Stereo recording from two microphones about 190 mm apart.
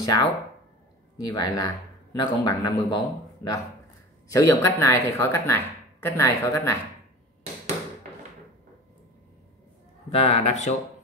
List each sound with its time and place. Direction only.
0.0 s a man's voice: 20° left (ahead or behind)
4.3 s speech: 15° left (ahead or behind)
10.0 s speech: 30° left (ahead or behind)